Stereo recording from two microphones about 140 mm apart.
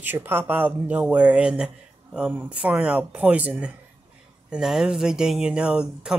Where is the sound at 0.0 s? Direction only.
15° right (ahead or behind).